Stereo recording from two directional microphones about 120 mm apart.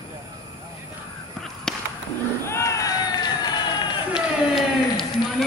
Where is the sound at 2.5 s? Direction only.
25° left (ahead or behind).